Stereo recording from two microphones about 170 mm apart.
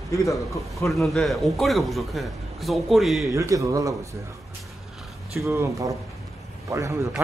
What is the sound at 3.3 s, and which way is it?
Speech, 20° right (ahead or behind).